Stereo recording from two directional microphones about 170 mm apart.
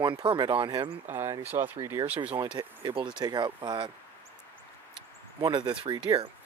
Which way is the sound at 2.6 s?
25° right (ahead or behind).